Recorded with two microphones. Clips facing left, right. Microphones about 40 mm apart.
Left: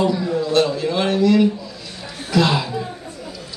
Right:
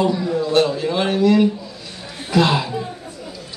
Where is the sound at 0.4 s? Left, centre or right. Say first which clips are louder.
Right 1 dB; centre.